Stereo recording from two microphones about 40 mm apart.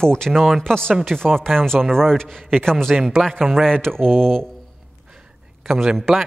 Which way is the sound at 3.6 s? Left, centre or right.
Centre.